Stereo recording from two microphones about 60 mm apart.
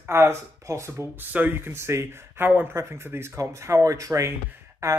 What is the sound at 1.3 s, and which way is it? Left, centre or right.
Speech, right.